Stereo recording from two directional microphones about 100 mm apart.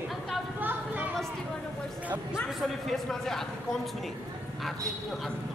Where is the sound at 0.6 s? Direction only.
20° right (ahead or behind).